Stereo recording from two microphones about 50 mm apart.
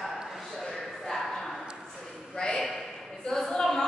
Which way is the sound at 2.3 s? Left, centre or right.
Centre.